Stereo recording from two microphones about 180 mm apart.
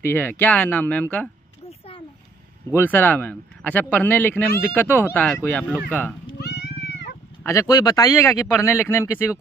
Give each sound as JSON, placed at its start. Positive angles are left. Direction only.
{"t": 0.0, "sound": "a man's voice", "side_deg": 10}
{"t": 2.8, "sound": "a man's voice", "side_deg": 10}
{"t": 6.4, "sound": "cat", "side_deg": 65}
{"t": 7.4, "sound": "a man's voice", "side_deg": 20}